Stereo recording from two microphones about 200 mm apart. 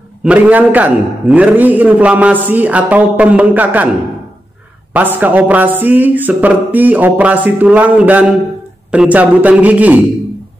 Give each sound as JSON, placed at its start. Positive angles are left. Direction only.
{"t": 0.2, "sound": "a man's voice", "side_deg": -5}
{"t": 4.9, "sound": "a man's voice", "side_deg": -10}